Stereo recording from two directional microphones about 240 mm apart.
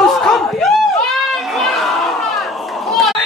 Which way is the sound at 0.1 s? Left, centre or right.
Centre.